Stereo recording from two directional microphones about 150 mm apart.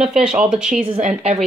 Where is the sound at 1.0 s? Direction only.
45° right (ahead or behind).